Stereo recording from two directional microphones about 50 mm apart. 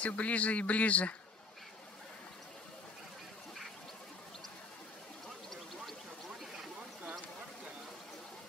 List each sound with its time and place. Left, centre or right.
0.0 s speech: left